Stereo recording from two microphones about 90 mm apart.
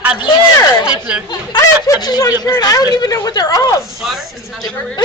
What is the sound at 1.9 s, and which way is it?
A woman's voice, 50° left (ahead or behind).